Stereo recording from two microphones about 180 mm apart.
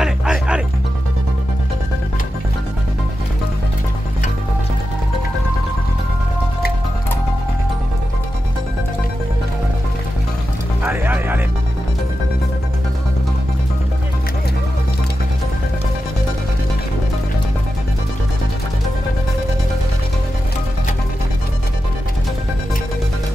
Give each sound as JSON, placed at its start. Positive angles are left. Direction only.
{"t": 0.0, "sound": "music", "side_deg": -5}
{"t": 10.8, "sound": "music", "side_deg": -10}